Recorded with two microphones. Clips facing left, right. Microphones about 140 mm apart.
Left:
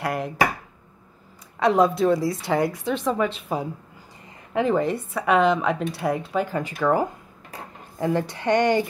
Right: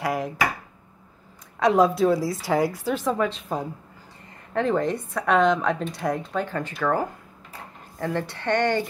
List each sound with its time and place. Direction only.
0.0 s a woman's voice: centre (ahead or behind)
1.6 s a woman's voice: centre (ahead or behind)